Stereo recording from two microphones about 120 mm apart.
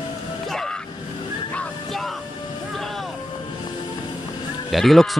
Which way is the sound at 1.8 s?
Centre (ahead or behind).